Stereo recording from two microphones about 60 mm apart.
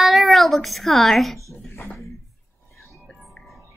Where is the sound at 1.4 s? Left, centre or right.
Left.